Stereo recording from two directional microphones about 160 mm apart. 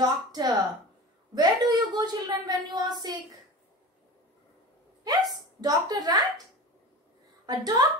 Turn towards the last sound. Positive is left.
turn(degrees=-25)  # may be behind; listen again after turning